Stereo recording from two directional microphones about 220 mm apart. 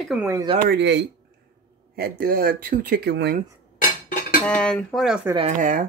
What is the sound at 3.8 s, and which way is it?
Cutlery, 40° left (ahead or behind).